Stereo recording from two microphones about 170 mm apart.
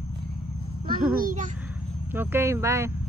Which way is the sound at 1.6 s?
10° right (ahead or behind).